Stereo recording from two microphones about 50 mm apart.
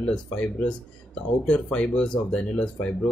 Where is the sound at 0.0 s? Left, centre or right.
Left.